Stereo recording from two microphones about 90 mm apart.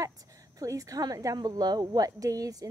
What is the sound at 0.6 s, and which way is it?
A woman's voice, 40° right (ahead or behind).